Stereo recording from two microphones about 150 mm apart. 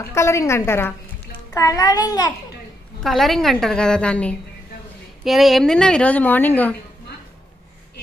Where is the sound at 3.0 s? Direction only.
Centre (ahead or behind).